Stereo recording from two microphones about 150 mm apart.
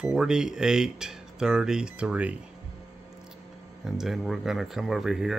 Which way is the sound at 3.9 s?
Centre (ahead or behind).